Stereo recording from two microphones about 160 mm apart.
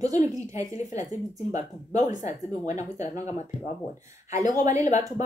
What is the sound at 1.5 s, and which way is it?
Speech, 50° left (ahead or behind).